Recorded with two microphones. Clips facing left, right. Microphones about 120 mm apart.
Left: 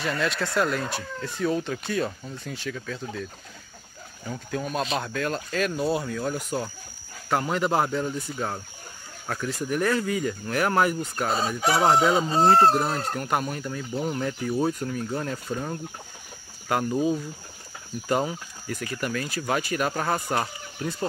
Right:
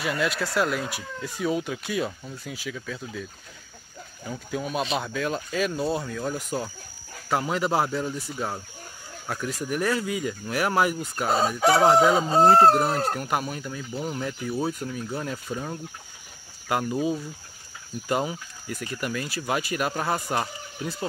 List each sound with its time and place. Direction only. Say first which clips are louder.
0.0 s speech: even; 5° right (ahead or behind)
4.3 s speech: even; 5° right (ahead or behind)
11.4 s chicken: right 5 dB; 50° right (ahead or behind)
11.8 s speech: even; 5° right (ahead or behind)
16.6 s speech: left 1 dB; 5° right (ahead or behind)